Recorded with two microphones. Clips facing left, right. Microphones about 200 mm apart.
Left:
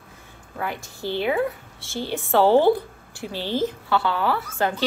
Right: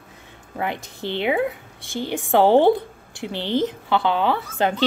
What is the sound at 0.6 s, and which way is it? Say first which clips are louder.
A woman's voice: right 3 dB; 20° right (ahead or behind).